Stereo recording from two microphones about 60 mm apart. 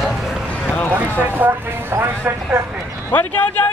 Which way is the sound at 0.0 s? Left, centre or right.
Centre.